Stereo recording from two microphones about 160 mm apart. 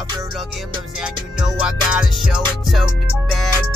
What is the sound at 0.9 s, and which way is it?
Music, 5° right (ahead or behind).